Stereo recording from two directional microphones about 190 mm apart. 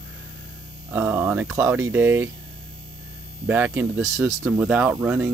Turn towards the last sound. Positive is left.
turn(degrees=-5)  # may be behind; listen again after turning